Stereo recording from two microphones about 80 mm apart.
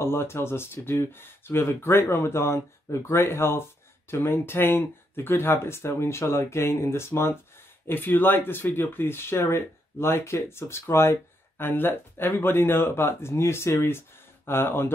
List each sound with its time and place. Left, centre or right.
0.0 s speech: left